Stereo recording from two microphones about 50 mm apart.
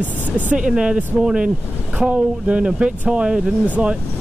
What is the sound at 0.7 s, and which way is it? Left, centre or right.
Speech, centre.